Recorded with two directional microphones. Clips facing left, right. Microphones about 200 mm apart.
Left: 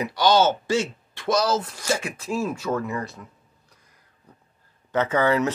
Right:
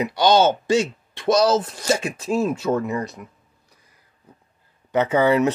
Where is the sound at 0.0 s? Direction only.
20° right (ahead or behind).